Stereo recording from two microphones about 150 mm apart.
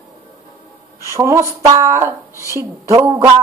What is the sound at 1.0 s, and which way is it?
Speech, 20° right (ahead or behind).